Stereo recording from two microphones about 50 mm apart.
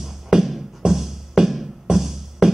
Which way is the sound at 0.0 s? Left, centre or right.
Centre.